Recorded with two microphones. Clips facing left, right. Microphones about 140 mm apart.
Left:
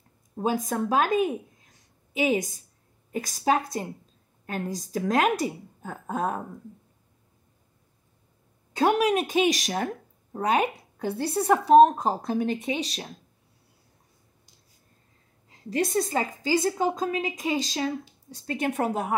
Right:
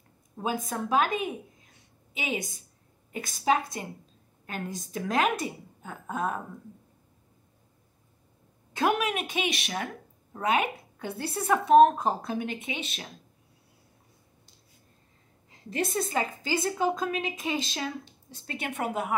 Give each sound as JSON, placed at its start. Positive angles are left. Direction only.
{"t": 0.4, "sound": "a woman's voice", "side_deg": 40}
{"t": 8.7, "sound": "a woman's voice", "side_deg": 35}
{"t": 15.7, "sound": "a woman's voice", "side_deg": 35}